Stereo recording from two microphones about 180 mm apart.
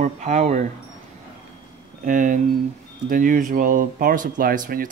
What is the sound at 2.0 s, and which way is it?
Speech, 45° right (ahead or behind).